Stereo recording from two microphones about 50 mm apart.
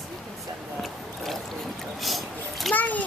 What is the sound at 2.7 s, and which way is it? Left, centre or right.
Speech, left.